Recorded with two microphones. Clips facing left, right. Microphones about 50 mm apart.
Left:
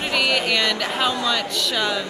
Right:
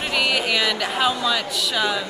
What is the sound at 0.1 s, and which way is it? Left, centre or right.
Speech, centre.